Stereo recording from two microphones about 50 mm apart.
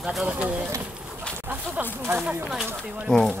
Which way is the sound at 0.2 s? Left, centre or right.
Right.